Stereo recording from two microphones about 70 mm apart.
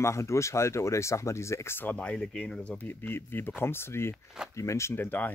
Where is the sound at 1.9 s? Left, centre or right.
Centre.